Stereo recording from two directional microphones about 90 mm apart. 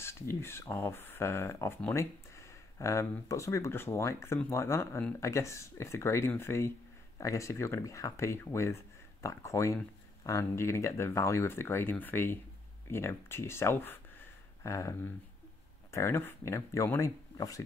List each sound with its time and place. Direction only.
0.0 s speech: 30° left (ahead or behind)